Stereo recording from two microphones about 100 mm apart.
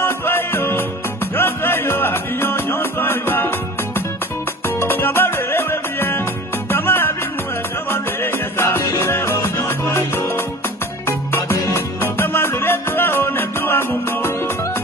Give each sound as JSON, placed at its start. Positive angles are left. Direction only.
{"t": 0.0, "sound": "music", "side_deg": 20}
{"t": 4.6, "sound": "music", "side_deg": 25}